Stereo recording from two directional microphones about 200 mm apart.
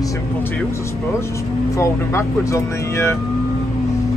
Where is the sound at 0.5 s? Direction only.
15° left (ahead or behind).